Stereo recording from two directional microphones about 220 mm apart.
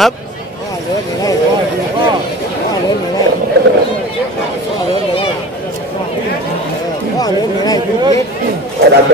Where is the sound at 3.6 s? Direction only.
45° right (ahead or behind).